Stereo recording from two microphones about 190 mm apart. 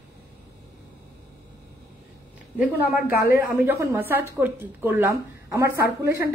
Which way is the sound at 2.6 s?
50° left (ahead or behind).